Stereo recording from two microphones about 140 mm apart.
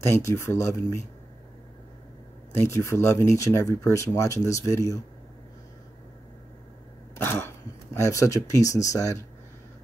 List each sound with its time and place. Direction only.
0.0 s speech: 20° left (ahead or behind)
2.5 s speech: 20° left (ahead or behind)
7.2 s speech: 15° left (ahead or behind)